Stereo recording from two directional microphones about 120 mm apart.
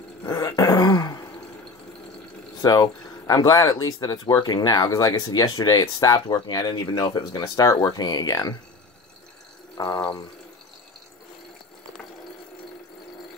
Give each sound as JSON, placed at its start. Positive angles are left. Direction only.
{"t": 0.2, "sound": "dog", "side_deg": 25}
{"t": 2.6, "sound": "speech", "side_deg": 35}
{"t": 9.8, "sound": "speech", "side_deg": 30}